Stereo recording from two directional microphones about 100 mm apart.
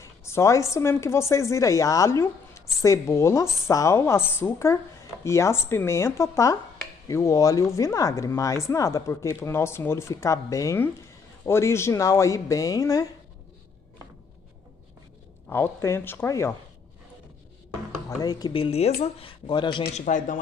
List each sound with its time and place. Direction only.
0.0 s a woman's voice: 30° left (ahead or behind)
15.5 s speech: 25° left (ahead or behind)
18.2 s speech: 40° left (ahead or behind)
18.5 s speech: 75° left (ahead or behind)
19.4 s speech: 50° left (ahead or behind)